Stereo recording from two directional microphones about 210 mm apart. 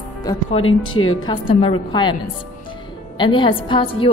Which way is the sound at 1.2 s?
25° left (ahead or behind).